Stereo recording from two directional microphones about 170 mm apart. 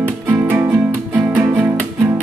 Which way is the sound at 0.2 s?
15° right (ahead or behind).